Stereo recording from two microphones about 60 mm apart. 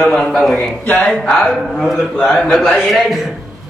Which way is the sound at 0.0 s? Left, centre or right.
Centre.